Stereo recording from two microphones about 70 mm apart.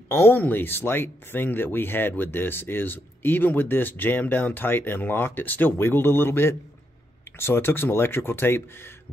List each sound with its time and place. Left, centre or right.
0.1 s speech: left